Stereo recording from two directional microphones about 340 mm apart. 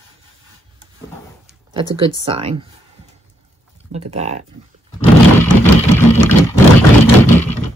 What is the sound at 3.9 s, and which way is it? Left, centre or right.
Speech, centre.